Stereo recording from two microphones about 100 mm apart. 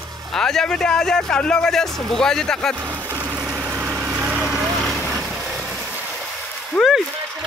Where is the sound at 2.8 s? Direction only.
20° right (ahead or behind).